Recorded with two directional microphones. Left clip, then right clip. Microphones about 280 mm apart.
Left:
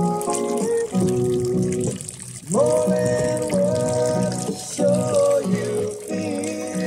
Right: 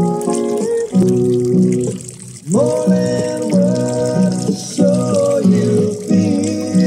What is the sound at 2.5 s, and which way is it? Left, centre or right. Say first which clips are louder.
Music: right 3 dB; right.